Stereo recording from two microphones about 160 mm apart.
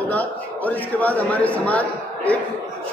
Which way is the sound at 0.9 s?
10° left (ahead or behind).